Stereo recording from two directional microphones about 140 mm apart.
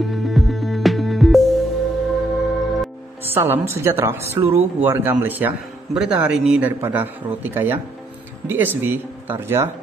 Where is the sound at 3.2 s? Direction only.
15° right (ahead or behind).